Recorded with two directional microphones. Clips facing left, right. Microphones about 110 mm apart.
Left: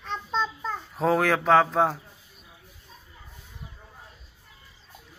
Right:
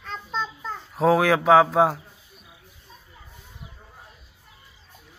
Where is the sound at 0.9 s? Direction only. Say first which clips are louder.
Right 4 dB; 5° right (ahead or behind).